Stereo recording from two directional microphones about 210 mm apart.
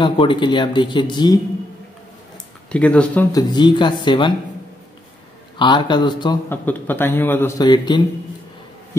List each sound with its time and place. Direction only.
0.0 s speech: 25° left (ahead or behind)
2.7 s speech: 5° left (ahead or behind)
3.3 s speech: 20° left (ahead or behind)
5.6 s speech: 20° left (ahead or behind)
6.5 s a man's voice: 10° left (ahead or behind)